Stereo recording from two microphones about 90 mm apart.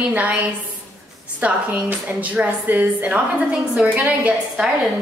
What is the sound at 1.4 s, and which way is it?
A woman's voice, 15° right (ahead or behind).